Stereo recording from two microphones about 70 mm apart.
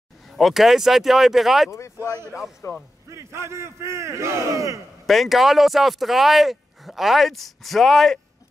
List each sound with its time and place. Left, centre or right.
0.4 s speech: centre
1.7 s speech: left
3.1 s speech: right
5.0 s speech: centre